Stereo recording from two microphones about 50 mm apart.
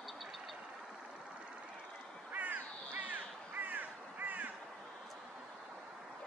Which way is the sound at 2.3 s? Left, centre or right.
Right.